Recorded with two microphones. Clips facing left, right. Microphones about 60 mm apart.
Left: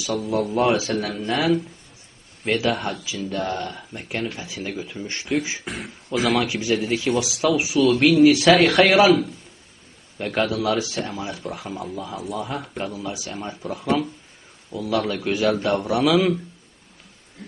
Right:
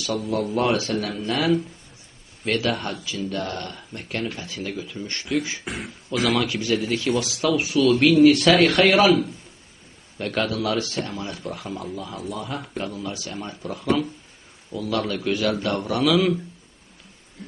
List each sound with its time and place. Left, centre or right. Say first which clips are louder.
0.0 s speech: left 1 dB; centre
2.4 s a man's voice: left 2 dB; centre
5.7 s speech: left 1 dB; centre
6.4 s speech: left 1 dB; centre
7.1 s speech: left 1 dB; centre
13.0 s speech: left 1 dB; centre